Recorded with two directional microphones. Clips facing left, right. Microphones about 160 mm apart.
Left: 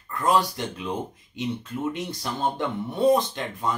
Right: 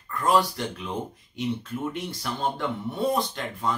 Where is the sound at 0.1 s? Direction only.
20° left (ahead or behind).